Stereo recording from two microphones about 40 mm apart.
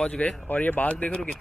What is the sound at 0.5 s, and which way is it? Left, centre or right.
Speech, left.